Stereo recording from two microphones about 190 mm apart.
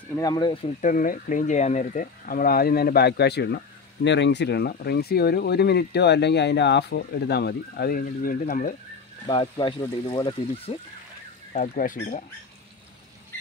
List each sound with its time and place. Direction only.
0.1 s speech: 20° left (ahead or behind)
0.7 s speech: 45° left (ahead or behind)
9.3 s speech: 25° left (ahead or behind)
11.5 s speech: 40° left (ahead or behind)